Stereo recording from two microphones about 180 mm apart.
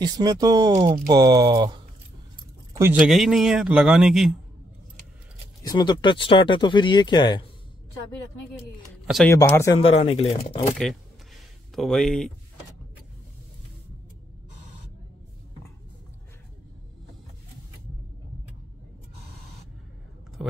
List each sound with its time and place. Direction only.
0.0 s speech: 20° right (ahead or behind)
3.0 s a man's voice: centre (ahead or behind)
5.6 s speech: 20° left (ahead or behind)
9.0 s speech: centre (ahead or behind)
9.3 s a man's voice: 15° left (ahead or behind)
9.8 s speech: 30° left (ahead or behind)
10.8 s a man's voice: 5° left (ahead or behind)
20.4 s a sound: centre (ahead or behind)